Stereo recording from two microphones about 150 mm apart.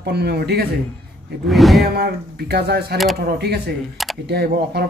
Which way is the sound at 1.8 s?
90° right.